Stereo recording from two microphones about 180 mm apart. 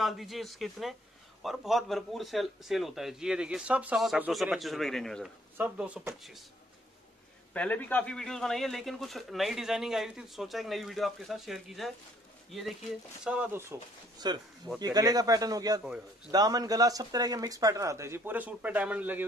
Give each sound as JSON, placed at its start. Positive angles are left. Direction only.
{"t": 0.0, "sound": "speech", "side_deg": 0}
{"t": 7.5, "sound": "speech", "side_deg": 10}
{"t": 14.2, "sound": "speech", "side_deg": -25}